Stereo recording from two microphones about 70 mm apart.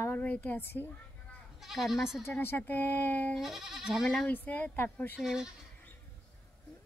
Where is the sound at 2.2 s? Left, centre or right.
Left.